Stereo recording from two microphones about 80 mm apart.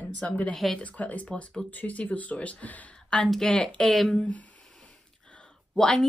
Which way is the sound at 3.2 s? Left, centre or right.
Centre.